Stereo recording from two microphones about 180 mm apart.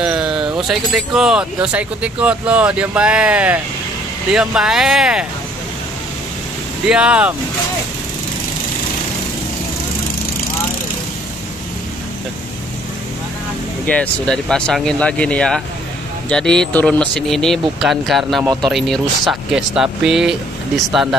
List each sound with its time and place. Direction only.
0.0 s speech: 5° right (ahead or behind)
6.9 s speech: 5° right (ahead or behind)
13.8 s speech: 5° left (ahead or behind)
18.4 s speech: 20° right (ahead or behind)
18.7 s speech: centre (ahead or behind)